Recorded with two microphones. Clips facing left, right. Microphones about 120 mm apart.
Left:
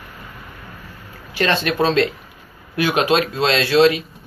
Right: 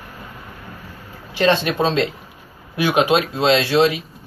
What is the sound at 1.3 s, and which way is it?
A man's voice, 20° right (ahead or behind).